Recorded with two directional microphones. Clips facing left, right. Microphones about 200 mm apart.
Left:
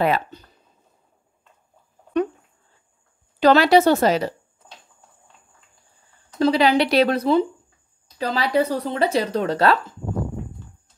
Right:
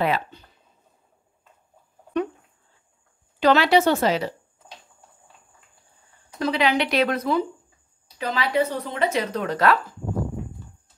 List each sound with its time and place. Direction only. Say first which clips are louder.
0.0 s speech: left 3 dB; 45° left (ahead or behind)
3.3 s speech: left 3 dB; 40° left (ahead or behind)
6.4 s speech: left 5 dB; 35° left (ahead or behind)